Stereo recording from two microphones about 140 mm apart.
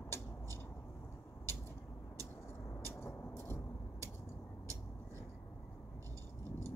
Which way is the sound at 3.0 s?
20° left (ahead or behind).